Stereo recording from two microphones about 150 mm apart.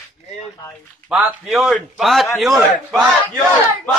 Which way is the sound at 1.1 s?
10° right (ahead or behind).